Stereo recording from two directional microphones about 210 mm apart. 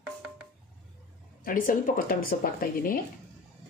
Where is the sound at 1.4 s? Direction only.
40° left (ahead or behind).